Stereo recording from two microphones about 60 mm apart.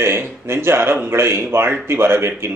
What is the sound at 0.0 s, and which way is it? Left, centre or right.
A man's voice, right.